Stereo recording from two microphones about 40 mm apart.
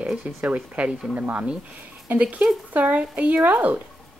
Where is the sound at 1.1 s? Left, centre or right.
Right.